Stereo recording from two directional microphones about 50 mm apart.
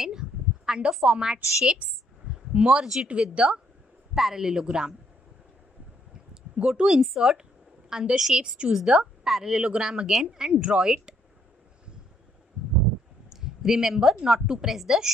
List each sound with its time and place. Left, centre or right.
0.0 s a sound: centre
1.1 s a woman's voice: centre
4.1 s a woman's voice: centre
6.5 s a woman's voice: centre
8.7 s a woman's voice: centre
13.3 s a sound: centre
14.1 s a woman's voice: centre